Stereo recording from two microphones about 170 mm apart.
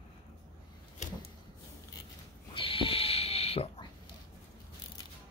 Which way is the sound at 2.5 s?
30° left (ahead or behind).